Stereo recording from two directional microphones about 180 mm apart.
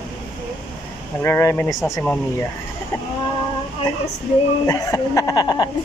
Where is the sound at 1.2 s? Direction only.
15° left (ahead or behind).